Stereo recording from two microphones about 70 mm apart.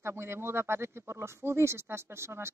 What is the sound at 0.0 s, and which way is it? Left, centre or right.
Speech, right.